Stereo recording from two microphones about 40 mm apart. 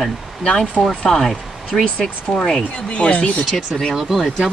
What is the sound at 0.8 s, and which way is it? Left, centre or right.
Speech, centre.